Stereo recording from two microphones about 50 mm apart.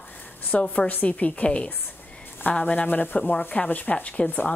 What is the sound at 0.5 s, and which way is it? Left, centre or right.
A woman's voice, left.